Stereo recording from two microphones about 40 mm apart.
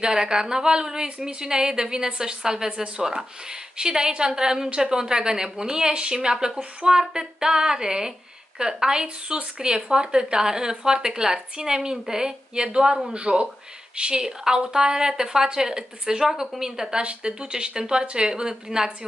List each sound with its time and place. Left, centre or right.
0.0 s speech: centre
17.0 s speech: right